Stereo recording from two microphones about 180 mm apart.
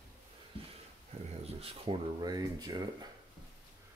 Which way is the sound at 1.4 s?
30° right (ahead or behind).